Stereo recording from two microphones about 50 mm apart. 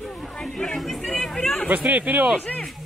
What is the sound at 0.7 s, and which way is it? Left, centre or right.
Chatter, centre.